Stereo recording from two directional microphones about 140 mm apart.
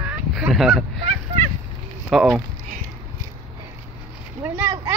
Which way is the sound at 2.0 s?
Centre (ahead or behind).